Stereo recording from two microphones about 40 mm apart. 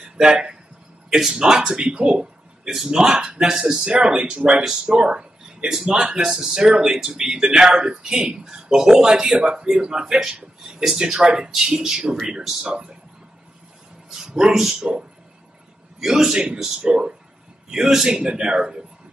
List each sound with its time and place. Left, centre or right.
0.0 s speech: centre
2.1 s speech: centre
9.4 s speech: right
12.6 s speech: right
14.1 s speech: centre
14.8 s speech: right
16.0 s speech: centre
17.6 s speech: centre
18.2 s speech: right